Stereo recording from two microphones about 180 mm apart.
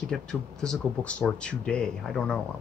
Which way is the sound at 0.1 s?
5° left (ahead or behind).